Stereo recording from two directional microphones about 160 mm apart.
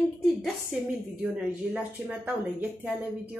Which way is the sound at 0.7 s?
5° right (ahead or behind).